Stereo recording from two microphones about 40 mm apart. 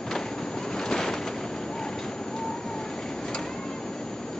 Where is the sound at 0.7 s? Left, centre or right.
Centre.